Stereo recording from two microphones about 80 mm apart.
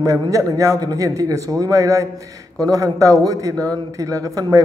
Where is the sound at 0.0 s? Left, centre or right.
Right.